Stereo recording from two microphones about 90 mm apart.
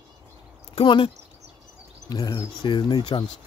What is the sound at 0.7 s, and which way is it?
Speech, 75° left (ahead or behind).